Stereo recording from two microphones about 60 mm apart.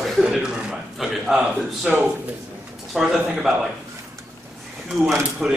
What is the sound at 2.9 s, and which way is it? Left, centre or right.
Speech, centre.